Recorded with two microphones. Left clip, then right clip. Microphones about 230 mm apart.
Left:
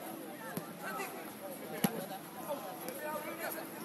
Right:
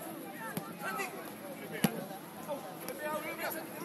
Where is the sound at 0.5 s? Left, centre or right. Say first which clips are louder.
Right 3 dB; right.